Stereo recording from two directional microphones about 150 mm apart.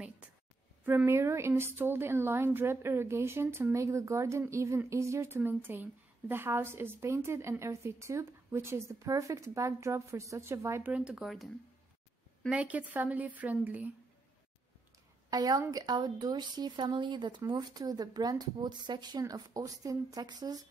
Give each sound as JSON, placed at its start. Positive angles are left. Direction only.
{"t": 0.8, "sound": "a woman's voice", "side_deg": -15}
{"t": 15.2, "sound": "speech", "side_deg": -25}